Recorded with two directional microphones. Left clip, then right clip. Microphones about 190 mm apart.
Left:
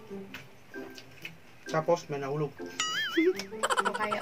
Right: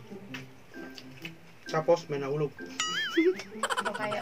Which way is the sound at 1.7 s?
15° right (ahead or behind).